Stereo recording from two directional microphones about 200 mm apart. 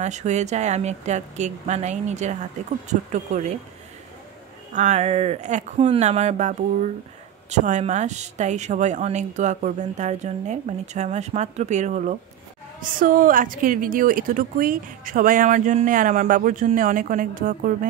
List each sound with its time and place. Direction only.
0.0 s a woman's voice: 35° right (ahead or behind)
4.7 s a woman's voice: 35° right (ahead or behind)